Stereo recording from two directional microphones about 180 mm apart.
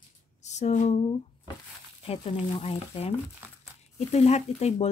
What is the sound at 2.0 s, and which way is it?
Speech, 35° left (ahead or behind).